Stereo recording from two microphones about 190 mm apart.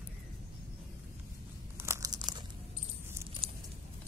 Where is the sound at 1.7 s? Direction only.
15° right (ahead or behind).